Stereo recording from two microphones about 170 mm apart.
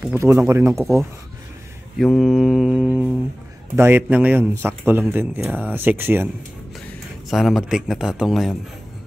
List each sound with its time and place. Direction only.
0.0 s speech: 15° right (ahead or behind)
2.0 s mantra: centre (ahead or behind)
3.7 s speech: 15° right (ahead or behind)
6.9 s a man's voice: centre (ahead or behind)